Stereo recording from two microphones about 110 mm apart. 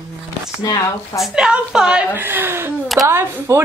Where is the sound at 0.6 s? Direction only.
30° left (ahead or behind).